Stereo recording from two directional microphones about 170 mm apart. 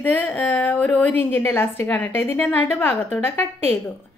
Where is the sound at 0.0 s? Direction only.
10° left (ahead or behind).